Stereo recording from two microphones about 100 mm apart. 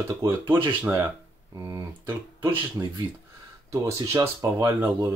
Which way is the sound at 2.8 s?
25° right (ahead or behind).